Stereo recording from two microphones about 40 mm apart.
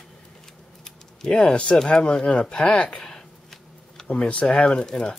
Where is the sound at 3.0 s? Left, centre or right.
Centre.